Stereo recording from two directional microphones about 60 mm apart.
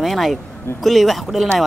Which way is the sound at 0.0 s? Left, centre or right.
Centre.